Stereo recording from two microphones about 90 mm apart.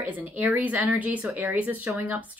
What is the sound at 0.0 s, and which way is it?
Speech, 15° right (ahead or behind).